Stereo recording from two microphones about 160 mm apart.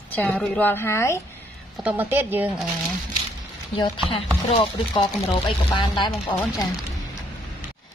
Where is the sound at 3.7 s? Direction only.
30° left (ahead or behind).